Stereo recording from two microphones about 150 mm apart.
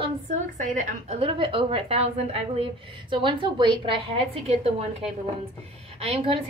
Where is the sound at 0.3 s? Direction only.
50° right (ahead or behind).